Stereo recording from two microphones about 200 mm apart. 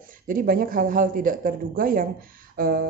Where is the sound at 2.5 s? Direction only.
45° right (ahead or behind).